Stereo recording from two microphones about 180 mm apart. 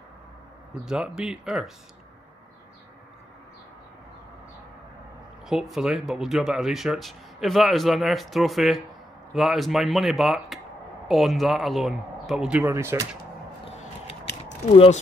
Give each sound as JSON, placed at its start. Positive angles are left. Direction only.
{"t": 0.8, "sound": "speech", "side_deg": -5}
{"t": 5.5, "sound": "speech", "side_deg": 0}
{"t": 14.7, "sound": "speech", "side_deg": 35}